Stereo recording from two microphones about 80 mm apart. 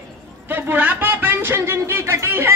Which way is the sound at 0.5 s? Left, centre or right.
Right.